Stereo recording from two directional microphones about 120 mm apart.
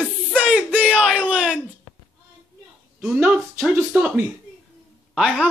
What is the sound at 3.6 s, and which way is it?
Speech, 15° right (ahead or behind).